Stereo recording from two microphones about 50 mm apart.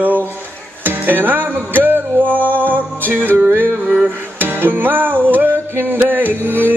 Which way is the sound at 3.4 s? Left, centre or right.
Right.